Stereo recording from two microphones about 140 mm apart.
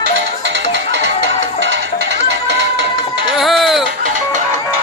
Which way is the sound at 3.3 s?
Centre (ahead or behind).